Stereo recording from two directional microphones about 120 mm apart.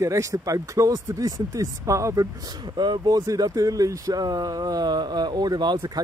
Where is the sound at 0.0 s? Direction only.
25° right (ahead or behind).